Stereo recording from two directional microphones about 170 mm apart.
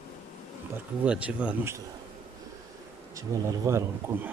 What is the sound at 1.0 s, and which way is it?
Speech, 5° right (ahead or behind).